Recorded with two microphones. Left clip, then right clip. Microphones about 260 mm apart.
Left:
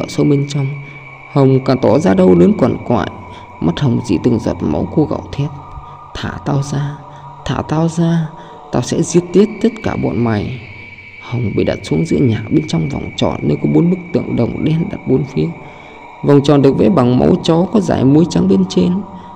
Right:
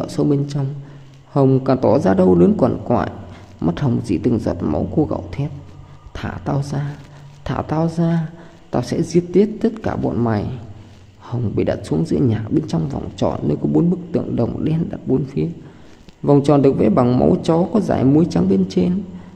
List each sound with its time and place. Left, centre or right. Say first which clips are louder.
0.0 s speech: left 4 dB; centre